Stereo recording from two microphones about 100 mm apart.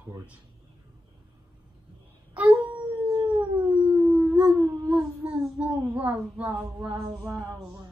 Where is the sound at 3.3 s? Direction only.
15° right (ahead or behind).